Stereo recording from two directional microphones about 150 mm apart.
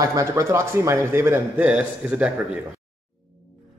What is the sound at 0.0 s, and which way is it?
A man's voice, 20° right (ahead or behind).